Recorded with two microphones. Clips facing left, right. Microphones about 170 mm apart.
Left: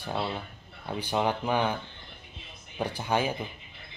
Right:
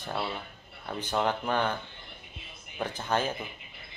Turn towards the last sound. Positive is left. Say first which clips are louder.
# left 1 dB
turn(degrees=10)  # may be behind; listen again after turning